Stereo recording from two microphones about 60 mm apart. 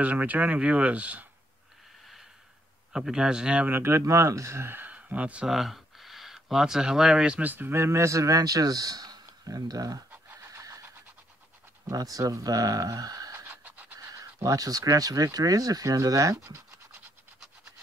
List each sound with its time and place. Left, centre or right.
0.0 s speech: right
2.9 s a man's voice: centre
3.6 s speech: right
4.0 s speech: right
4.8 s a sound: right
5.5 s speech: centre
7.7 s a man's voice: right
10.3 s vehicle: right
10.6 s vehicle: right
11.9 s a man's voice: right
13.5 s pant: right
13.9 s speech: right